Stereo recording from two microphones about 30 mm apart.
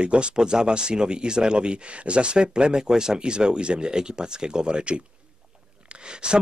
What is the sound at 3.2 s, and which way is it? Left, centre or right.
Speech, right.